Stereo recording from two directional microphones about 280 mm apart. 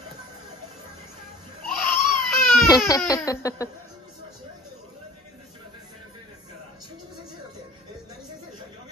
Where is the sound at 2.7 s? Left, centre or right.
Centre.